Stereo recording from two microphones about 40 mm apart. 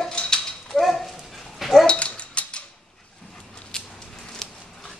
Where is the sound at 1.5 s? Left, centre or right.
Centre.